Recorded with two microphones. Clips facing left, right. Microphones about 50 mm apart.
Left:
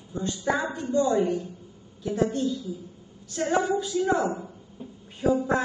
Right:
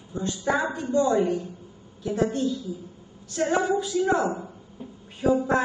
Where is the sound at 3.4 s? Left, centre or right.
Right.